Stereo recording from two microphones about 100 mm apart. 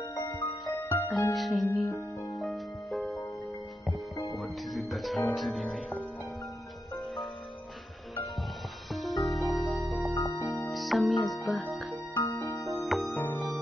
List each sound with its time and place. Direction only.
0.1 s music: 45° left (ahead or behind)
0.7 s music: 25° left (ahead or behind)
1.3 s music: centre (ahead or behind)
4.4 s music: centre (ahead or behind)
8.9 s music: centre (ahead or behind)
10.1 s music: 40° left (ahead or behind)
10.7 s music: centre (ahead or behind)
12.1 s music: 25° left (ahead or behind)
12.6 s music: centre (ahead or behind)